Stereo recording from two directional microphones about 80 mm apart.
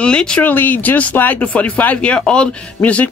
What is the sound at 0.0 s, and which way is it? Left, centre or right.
Speech, centre.